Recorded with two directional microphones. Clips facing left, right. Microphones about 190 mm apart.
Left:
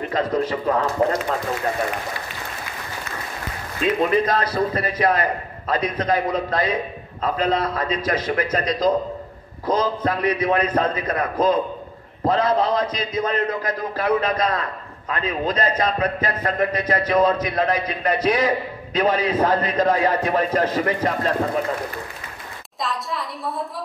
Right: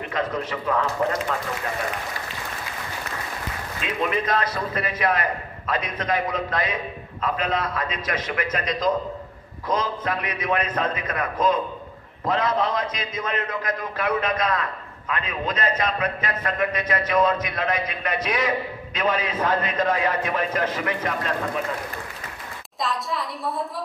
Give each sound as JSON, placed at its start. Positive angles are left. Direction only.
{"t": 0.1, "sound": "a man's voice", "side_deg": 35}
{"t": 3.8, "sound": "a man's voice", "side_deg": 35}
{"t": 22.8, "sound": "a sound", "side_deg": 0}